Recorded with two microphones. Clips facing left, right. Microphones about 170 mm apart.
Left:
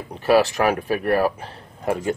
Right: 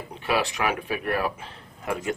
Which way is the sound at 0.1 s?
40° left (ahead or behind).